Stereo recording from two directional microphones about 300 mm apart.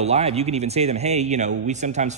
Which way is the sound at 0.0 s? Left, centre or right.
Right.